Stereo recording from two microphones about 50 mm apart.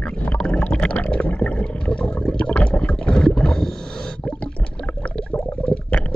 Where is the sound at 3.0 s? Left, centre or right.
Centre.